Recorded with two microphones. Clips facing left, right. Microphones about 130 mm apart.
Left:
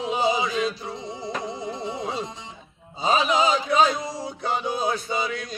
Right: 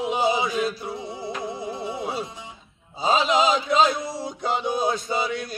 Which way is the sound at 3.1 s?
20° right (ahead or behind).